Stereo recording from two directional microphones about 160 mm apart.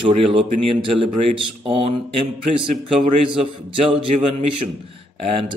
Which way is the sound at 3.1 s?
35° right (ahead or behind).